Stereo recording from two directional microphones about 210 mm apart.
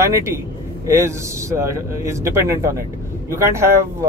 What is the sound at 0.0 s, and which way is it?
A man's voice, 15° right (ahead or behind).